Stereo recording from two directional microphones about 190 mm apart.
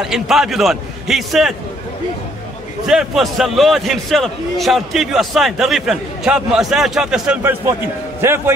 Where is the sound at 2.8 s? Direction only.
Centre (ahead or behind).